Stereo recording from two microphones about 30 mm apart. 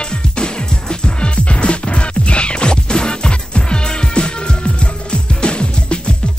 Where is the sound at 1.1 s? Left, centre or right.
Left.